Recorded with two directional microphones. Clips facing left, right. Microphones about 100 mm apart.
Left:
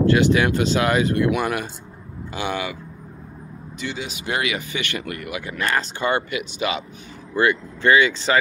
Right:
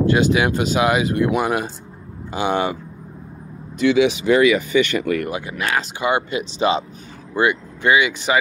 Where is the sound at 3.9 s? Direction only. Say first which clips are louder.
Right 17 dB; 80° right.